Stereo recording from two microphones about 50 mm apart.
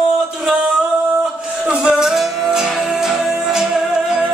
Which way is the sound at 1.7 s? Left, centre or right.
Centre.